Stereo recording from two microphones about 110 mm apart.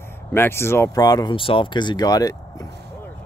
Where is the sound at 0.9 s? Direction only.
35° left (ahead or behind).